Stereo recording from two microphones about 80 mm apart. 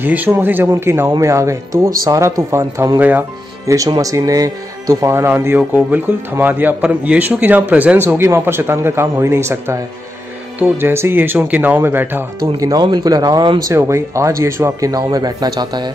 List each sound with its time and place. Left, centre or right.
0.0 s a man's voice: right
3.0 s a man's voice: right
3.6 s a man's voice: right
10.8 s a man's voice: right
12.5 s speech: right
12.8 s a man's voice: right
13.7 s speech: right